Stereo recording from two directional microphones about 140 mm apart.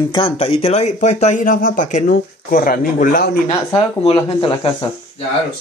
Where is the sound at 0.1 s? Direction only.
40° left (ahead or behind); by 3.3 s 80° left.